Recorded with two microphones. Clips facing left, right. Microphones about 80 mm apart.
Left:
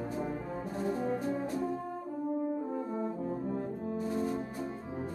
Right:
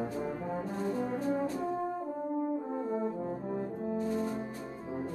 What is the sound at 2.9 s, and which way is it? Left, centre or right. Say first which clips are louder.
Brass instrument: right 1 dB; centre.